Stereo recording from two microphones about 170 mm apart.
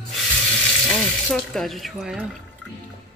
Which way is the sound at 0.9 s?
5° left (ahead or behind).